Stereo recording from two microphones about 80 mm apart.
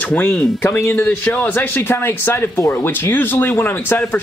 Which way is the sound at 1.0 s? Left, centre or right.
Centre.